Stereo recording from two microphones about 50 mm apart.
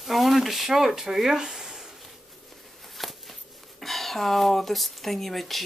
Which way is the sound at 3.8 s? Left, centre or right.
Centre.